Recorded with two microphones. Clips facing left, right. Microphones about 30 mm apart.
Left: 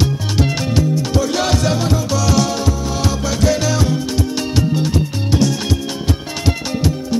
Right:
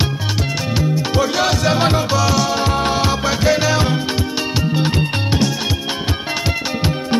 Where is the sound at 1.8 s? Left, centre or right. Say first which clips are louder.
Right 3 dB; right.